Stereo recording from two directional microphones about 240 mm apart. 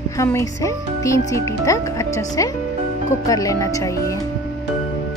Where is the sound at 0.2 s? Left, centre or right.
Centre.